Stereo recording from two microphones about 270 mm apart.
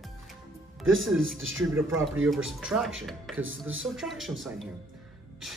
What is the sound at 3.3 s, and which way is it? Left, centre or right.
Speech, right.